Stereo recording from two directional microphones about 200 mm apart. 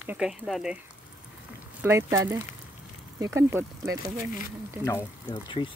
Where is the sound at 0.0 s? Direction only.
5° right (ahead or behind).